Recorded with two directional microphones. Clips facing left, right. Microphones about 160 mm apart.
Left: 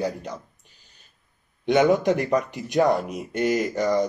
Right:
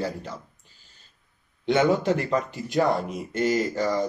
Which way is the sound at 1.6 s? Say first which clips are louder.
Left 3 dB; 15° left (ahead or behind).